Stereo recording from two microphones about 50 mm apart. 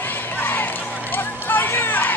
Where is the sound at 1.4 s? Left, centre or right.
Left.